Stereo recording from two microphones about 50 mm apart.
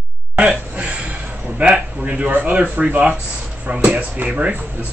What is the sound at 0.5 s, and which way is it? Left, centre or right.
Speech, right.